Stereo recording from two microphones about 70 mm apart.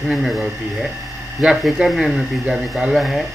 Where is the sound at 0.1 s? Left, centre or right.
Centre.